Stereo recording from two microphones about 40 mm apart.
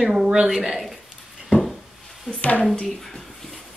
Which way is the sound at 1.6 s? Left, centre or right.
Centre.